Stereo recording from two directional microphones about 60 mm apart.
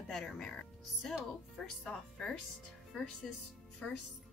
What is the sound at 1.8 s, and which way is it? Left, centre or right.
Speech, centre.